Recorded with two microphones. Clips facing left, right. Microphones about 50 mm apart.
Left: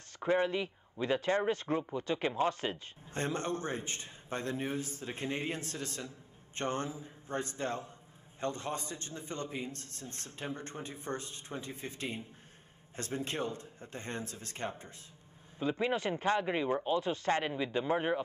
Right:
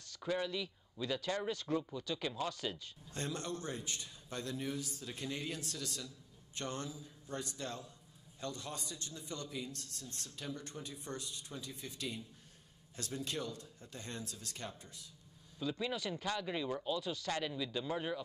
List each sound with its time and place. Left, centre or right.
0.1 s speech: left